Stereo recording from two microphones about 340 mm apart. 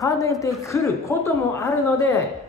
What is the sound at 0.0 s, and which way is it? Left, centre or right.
A woman's voice, centre.